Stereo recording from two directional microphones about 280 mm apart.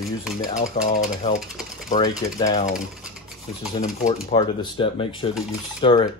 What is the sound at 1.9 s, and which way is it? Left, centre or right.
Speech, centre.